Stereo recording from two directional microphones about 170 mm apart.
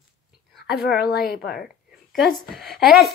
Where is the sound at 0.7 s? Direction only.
70° left (ahead or behind).